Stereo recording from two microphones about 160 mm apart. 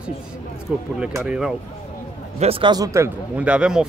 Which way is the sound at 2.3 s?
35° right (ahead or behind).